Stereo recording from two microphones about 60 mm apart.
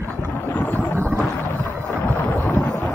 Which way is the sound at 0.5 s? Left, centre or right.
Left.